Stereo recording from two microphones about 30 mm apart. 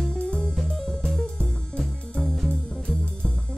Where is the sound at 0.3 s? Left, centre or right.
Left.